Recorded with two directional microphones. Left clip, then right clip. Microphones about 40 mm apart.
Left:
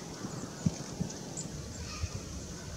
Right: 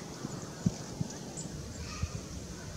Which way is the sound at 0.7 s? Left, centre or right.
Centre.